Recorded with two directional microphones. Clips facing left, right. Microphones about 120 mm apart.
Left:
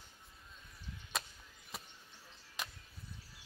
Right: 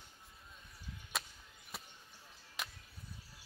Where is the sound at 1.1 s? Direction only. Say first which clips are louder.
Left 1 dB; centre (ahead or behind).